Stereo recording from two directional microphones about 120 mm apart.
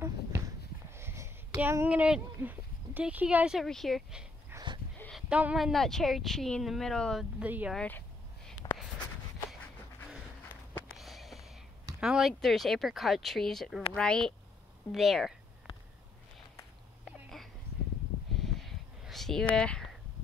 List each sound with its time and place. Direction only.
0.9 s speech: 20° right (ahead or behind); by 4.3 s 5° right (ahead or behind)
4.5 s wheeze: 20° right (ahead or behind)
5.3 s speech: 10° right (ahead or behind)
7.3 s speech: 10° right (ahead or behind)
7.7 s speech: 10° left (ahead or behind)
11.0 s a sound: centre (ahead or behind)
12.0 s speech: centre (ahead or behind)
17.0 s a sound: centre (ahead or behind)
19.5 s speech: 10° left (ahead or behind)